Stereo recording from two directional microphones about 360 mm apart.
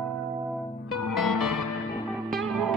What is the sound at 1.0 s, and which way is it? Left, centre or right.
Music, left.